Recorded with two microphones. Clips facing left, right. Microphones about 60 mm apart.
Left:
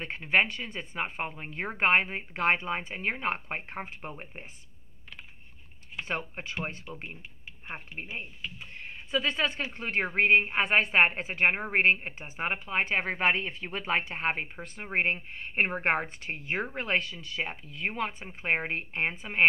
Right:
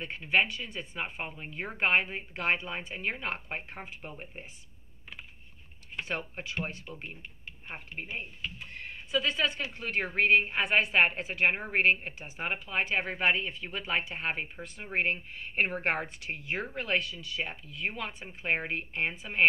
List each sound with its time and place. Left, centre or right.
0.0 s a woman's voice: left
6.0 s a woman's voice: left
7.9 s speech: centre
9.1 s a woman's voice: left
17.1 s a woman's voice: left